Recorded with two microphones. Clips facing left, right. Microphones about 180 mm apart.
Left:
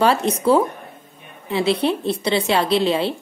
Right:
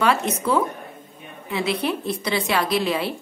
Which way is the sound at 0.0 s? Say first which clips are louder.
Left 4 dB; 30° left (ahead or behind).